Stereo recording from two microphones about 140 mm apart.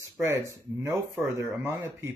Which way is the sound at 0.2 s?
20° right (ahead or behind).